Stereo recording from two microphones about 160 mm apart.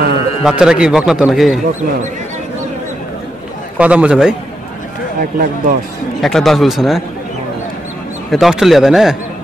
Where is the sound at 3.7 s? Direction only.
5° right (ahead or behind).